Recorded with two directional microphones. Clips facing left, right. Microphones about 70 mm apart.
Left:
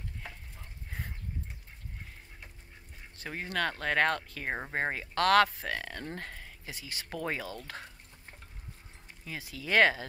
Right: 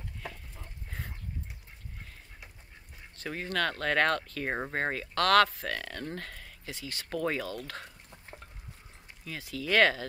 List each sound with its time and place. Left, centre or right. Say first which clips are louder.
3.2 s speech: right 2 dB; centre
9.2 s speech: right 3 dB; centre